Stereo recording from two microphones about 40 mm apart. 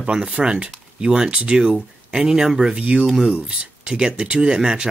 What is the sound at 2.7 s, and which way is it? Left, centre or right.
Speech, right.